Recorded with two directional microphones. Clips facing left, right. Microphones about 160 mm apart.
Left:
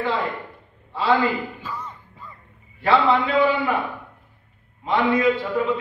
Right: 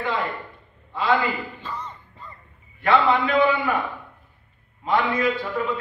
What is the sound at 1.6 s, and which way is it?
Music, 10° left (ahead or behind).